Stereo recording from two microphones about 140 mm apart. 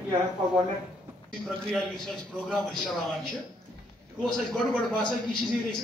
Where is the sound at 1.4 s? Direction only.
5° left (ahead or behind).